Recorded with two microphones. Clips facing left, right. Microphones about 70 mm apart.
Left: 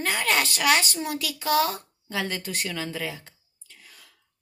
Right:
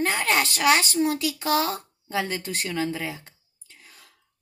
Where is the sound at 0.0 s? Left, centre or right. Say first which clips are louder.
Right 2 dB; right.